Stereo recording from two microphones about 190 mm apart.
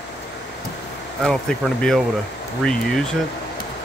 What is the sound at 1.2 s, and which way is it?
Speech, 5° left (ahead or behind).